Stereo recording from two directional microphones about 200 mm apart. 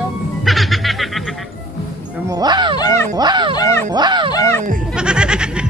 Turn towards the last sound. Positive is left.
turn(degrees=-5)  # may be behind; listen again after turning